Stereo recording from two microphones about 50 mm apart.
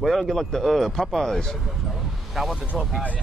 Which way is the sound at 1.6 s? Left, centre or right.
Centre.